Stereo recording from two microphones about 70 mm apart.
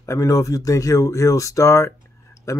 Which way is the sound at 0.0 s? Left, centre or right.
Left.